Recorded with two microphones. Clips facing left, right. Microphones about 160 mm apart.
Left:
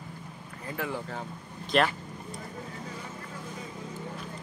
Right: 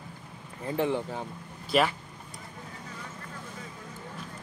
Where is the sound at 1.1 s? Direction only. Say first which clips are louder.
Right 1 dB; 10° right (ahead or behind).